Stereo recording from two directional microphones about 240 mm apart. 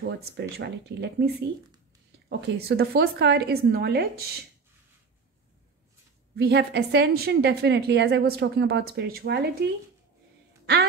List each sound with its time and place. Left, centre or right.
0.0 s a woman's voice: right
6.3 s a woman's voice: right